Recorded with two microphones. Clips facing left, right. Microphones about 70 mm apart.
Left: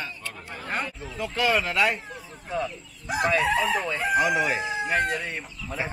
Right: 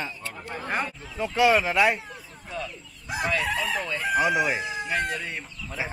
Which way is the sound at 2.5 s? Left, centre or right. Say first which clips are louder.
Left 5 dB; left.